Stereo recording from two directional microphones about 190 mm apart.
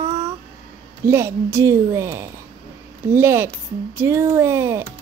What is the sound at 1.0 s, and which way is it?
Speech, 15° right (ahead or behind).